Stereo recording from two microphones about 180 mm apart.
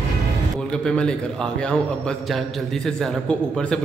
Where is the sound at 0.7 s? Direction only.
5° left (ahead or behind).